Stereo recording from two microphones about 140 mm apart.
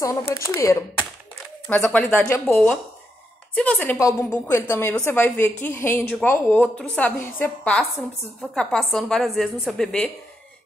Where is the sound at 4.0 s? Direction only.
20° left (ahead or behind).